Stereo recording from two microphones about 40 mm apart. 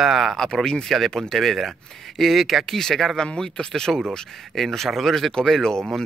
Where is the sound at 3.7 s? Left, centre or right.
Centre.